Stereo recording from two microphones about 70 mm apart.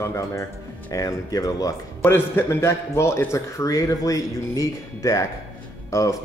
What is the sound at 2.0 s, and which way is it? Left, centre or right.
A man's voice, left.